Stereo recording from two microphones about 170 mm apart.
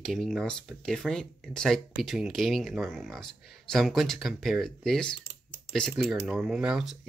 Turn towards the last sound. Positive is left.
turn(degrees=-5)  # may be behind; listen again after turning